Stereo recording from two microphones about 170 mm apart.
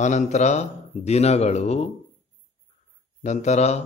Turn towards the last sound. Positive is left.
turn(degrees=40)  # may be behind; listen again after turning